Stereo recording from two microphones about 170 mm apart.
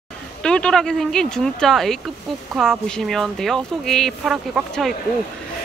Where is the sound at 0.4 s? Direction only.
5° left (ahead or behind).